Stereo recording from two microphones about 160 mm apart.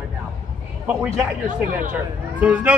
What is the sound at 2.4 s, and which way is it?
Speech, 10° right (ahead or behind).